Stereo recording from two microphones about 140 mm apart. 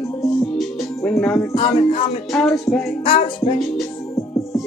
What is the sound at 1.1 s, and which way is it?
Speech, 10° left (ahead or behind).